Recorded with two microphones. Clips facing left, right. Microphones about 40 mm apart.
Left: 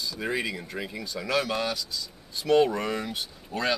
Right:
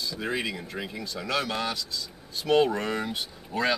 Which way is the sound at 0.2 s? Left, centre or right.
Centre.